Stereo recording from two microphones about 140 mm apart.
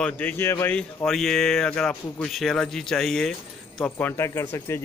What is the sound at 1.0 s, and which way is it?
Speech, centre (ahead or behind).